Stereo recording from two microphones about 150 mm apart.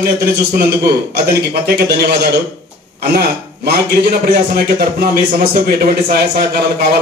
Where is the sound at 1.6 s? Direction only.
90° right.